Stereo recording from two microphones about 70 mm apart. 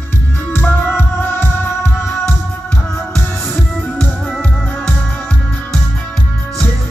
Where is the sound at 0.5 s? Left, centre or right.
Left.